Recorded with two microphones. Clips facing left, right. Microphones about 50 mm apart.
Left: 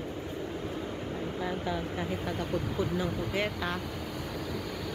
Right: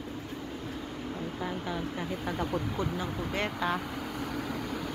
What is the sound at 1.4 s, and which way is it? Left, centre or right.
Speech, centre.